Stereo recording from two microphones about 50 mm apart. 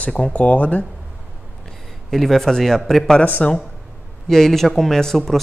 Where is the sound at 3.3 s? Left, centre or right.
Left.